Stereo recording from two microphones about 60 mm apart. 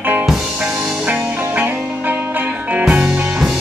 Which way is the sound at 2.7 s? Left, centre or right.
Right.